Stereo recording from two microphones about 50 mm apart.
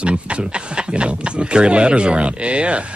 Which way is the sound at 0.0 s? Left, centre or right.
Right.